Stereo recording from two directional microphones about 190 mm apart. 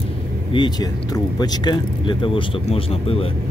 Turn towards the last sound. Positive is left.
turn(degrees=30)  # may be behind; listen again after turning